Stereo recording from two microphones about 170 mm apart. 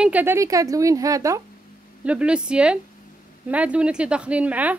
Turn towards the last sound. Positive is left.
turn(degrees=-10)  # may be behind; listen again after turning